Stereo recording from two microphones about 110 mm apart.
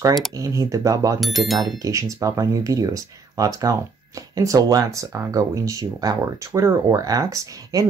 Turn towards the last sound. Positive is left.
turn(degrees=-30)  # may be behind; listen again after turning